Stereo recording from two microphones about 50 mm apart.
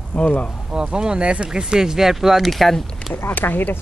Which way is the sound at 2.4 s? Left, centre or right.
Centre.